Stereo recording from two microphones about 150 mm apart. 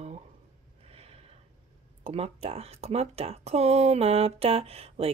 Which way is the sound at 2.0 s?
40° right (ahead or behind).